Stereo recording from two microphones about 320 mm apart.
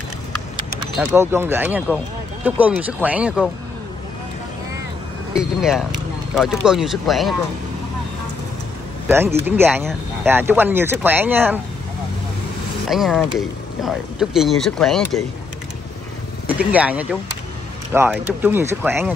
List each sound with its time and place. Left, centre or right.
0.9 s speech: centre
5.3 s speech: centre
9.0 s speech: centre
12.8 s speech: centre
16.4 s speech: centre